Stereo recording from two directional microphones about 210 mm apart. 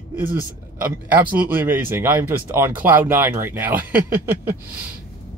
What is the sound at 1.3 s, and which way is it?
Speech, 10° right (ahead or behind).